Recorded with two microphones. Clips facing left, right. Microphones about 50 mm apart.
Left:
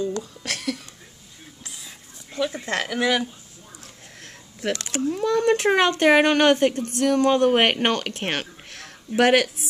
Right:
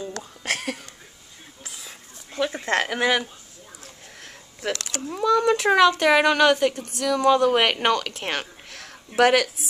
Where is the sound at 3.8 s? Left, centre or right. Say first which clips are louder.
Right 1 dB; right.